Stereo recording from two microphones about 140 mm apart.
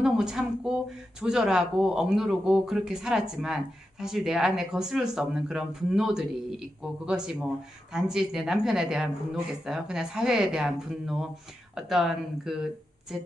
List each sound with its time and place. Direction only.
0.0 s speech: 5° right (ahead or behind)